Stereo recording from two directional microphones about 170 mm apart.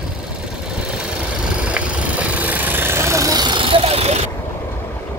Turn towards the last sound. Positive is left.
turn(degrees=-35)  # may be behind; listen again after turning